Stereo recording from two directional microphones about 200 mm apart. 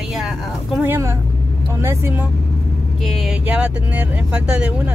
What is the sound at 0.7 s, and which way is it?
Speech, 10° right (ahead or behind).